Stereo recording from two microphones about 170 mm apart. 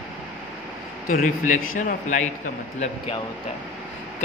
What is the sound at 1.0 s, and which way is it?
Speech, 55° left (ahead or behind).